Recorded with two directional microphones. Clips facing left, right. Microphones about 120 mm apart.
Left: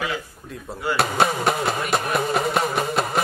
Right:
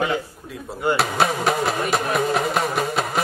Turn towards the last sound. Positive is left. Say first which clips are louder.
# even
turn(degrees=0)  # may be behind; listen again after turning